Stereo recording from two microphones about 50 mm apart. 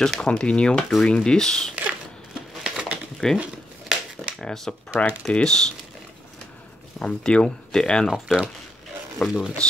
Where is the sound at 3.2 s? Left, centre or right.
Centre.